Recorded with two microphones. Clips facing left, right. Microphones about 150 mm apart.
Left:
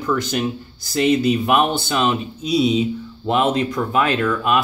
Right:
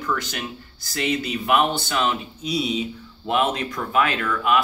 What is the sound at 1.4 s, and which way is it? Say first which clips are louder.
Speech: left 3 dB; 20° left (ahead or behind).